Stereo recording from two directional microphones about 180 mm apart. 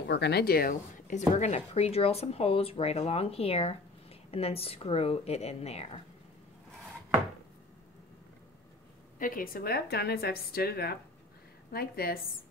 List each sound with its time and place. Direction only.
0.1 s speech: 65° left (ahead or behind); by 5.9 s 35° left (ahead or behind)
9.2 s a woman's voice: 50° left (ahead or behind)